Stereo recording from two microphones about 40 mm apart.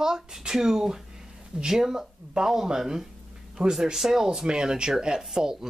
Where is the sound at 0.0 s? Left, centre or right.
Centre.